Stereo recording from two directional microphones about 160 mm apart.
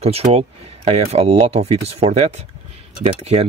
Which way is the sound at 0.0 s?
40° right (ahead or behind).